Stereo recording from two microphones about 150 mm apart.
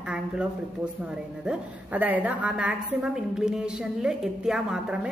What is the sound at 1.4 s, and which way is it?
A woman's voice, 10° right (ahead or behind).